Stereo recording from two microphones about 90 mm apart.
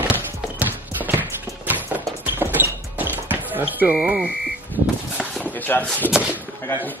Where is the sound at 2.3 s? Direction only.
25° right (ahead or behind).